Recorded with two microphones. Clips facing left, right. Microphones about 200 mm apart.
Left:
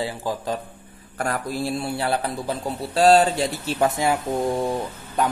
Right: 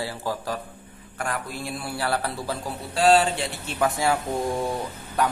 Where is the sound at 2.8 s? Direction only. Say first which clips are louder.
Left 3 dB; 35° left (ahead or behind).